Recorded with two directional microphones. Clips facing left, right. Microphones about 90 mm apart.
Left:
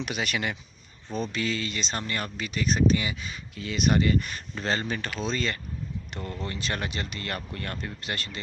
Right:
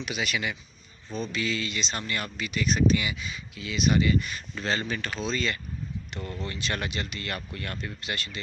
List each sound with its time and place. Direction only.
0.0 s speech: 45° left (ahead or behind)